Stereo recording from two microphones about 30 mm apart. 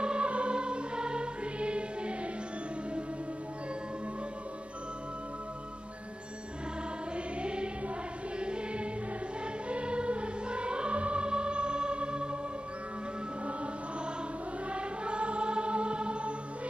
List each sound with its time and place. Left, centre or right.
0.0 s music: right
7.4 s music: right
14.7 s music: right